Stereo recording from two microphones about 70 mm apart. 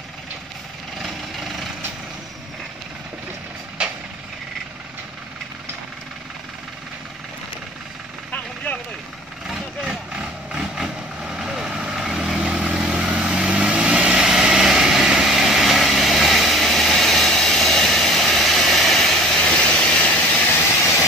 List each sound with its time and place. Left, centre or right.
1.0 s jackhammer: centre
9.5 s vehicle: centre